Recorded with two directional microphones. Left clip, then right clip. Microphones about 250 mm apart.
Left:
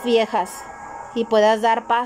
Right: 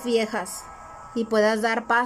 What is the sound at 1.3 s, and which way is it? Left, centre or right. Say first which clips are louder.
Speech: left 5 dB; centre.